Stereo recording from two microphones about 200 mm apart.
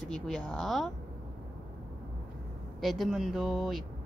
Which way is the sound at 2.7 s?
Centre (ahead or behind).